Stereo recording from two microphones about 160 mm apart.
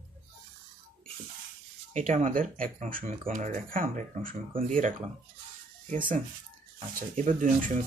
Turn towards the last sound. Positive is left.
turn(degrees=-55)  # may be behind; listen again after turning